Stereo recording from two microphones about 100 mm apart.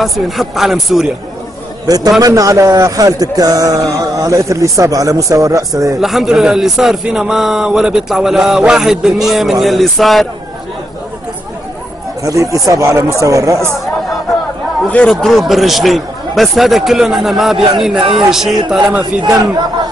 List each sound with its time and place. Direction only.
0.0 s a man's voice: 5° right (ahead or behind)
1.9 s a man's voice: 40° right (ahead or behind)
5.9 s a man's voice: 5° right (ahead or behind)
12.2 s a man's voice: 35° right (ahead or behind)
15.0 s a man's voice: centre (ahead or behind)
19.2 s speech: 45° right (ahead or behind)